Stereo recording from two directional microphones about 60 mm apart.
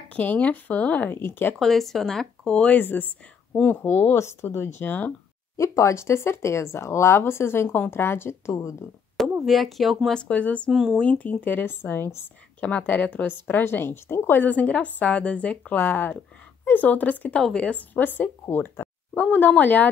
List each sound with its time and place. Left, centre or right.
0.1 s speech: left
1.1 s speech: left
1.6 s speech: centre
2.7 s speech: left
5.6 s speech: left
9.4 s speech: centre
10.1 s speech: left
10.7 s speech: centre
11.0 s speech: left
12.5 s speech: left
13.5 s speech: left
14.5 s speech: left
17.4 s speech: centre
17.6 s speech: left